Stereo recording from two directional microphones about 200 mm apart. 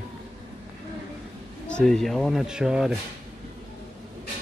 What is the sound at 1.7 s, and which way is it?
Speech, 5° left (ahead or behind).